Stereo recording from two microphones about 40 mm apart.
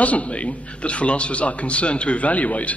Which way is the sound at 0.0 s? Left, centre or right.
Left.